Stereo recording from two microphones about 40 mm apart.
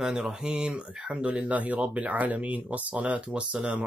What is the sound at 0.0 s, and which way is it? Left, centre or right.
Speech, right.